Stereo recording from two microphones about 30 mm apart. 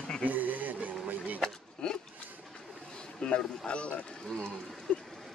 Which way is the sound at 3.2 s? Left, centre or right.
Left.